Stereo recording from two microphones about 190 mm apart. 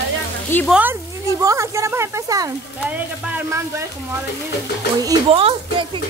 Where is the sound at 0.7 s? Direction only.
5° right (ahead or behind).